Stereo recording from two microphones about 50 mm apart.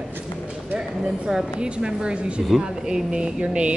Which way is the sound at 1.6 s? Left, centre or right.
Centre.